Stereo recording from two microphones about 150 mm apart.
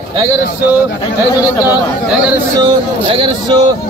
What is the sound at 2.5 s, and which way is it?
Speech, 35° right (ahead or behind).